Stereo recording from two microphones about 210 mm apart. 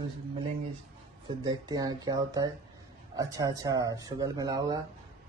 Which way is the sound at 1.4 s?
20° right (ahead or behind).